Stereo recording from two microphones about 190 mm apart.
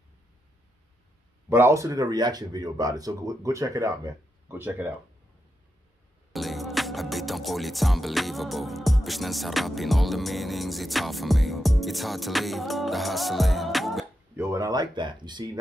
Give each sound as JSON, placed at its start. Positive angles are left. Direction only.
{"t": 1.5, "sound": "speech", "side_deg": -15}
{"t": 6.3, "sound": "music", "side_deg": 0}
{"t": 14.3, "sound": "speech", "side_deg": -15}